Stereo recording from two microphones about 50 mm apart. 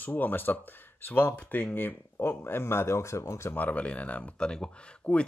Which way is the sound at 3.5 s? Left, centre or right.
Left.